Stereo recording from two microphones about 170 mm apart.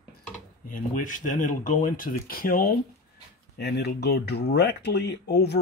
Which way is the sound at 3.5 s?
75° left (ahead or behind).